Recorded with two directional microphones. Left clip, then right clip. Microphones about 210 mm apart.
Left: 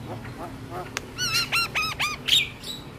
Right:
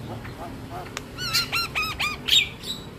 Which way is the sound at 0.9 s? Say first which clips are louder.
Left 1 dB; 15° left (ahead or behind).